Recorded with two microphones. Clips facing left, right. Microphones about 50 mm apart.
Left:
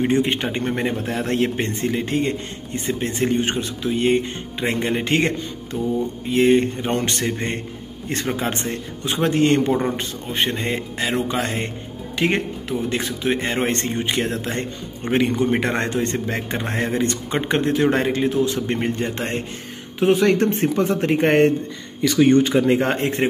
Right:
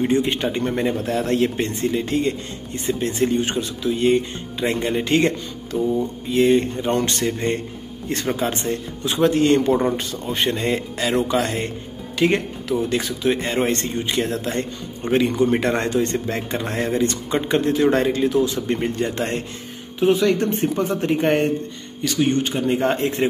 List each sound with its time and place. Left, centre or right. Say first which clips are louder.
0.0 s a man's voice: even; left
9.7 s speech: right 2 dB; centre
10.3 s a man's voice: right 1 dB; left
20.0 s speech: left 1 dB; left
22.8 s a man's voice: even; left